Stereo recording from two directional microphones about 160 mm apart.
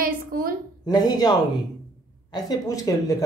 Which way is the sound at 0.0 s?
65° right (ahead or behind).